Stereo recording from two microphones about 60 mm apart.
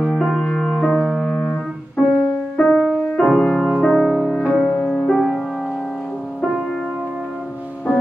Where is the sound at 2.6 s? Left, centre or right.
Centre.